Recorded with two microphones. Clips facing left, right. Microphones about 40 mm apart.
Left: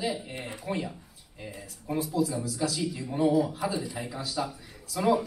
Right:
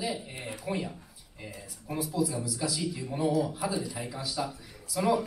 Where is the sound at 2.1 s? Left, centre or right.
Centre.